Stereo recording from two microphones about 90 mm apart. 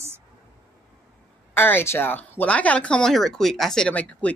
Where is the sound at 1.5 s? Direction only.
25° left (ahead or behind); by 3.9 s 5° left (ahead or behind).